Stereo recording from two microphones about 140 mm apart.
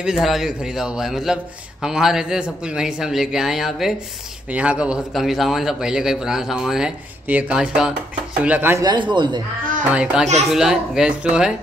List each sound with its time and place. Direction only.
0.0 s a man's voice: 5° right (ahead or behind)
8.8 s speech: 35° right (ahead or behind)
9.9 s a man's voice: 5° right (ahead or behind)